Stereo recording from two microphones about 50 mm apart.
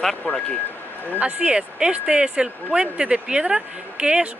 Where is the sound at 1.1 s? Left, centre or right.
Right.